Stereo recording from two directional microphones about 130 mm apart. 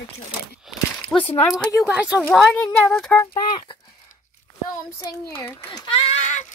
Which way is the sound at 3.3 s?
35° left (ahead or behind).